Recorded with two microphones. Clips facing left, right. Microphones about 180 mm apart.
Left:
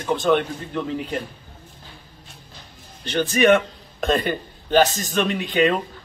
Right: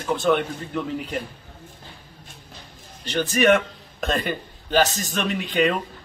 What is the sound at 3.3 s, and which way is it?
A man's voice, 5° right (ahead or behind).